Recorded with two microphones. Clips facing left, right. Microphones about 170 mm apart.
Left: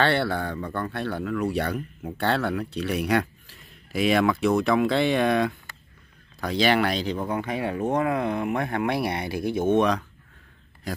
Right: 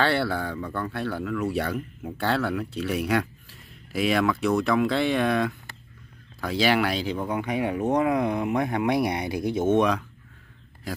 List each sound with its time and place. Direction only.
0.0 s speech: 5° right (ahead or behind); by 9.7 s 20° right (ahead or behind)
9.7 s speech: 5° right (ahead or behind)